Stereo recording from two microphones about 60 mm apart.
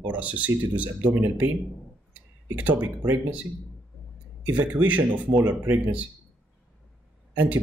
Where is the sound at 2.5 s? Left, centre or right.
Right.